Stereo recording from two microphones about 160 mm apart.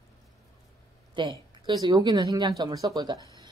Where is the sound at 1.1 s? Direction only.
30° right (ahead or behind).